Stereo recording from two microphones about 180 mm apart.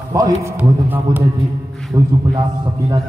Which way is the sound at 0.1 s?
20° right (ahead or behind).